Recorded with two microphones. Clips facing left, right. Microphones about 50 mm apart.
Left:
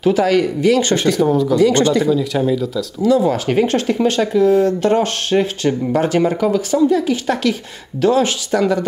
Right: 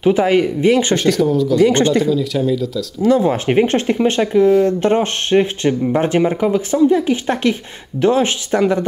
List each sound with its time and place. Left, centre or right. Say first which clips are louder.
0.0 s speech: right 1 dB; right
0.9 s a man's voice: right 1 dB; centre
1.6 s speech: right 2 dB; right
2.0 s a man's voice: left 1 dB; centre
3.0 s speech: even; right